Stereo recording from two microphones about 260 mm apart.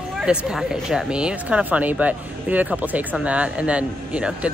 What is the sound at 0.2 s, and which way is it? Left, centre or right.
Speech, centre.